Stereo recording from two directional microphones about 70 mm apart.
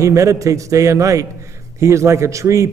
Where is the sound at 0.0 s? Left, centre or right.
Right.